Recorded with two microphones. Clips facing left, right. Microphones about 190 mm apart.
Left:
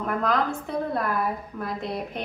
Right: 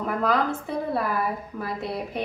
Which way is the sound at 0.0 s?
5° right (ahead or behind).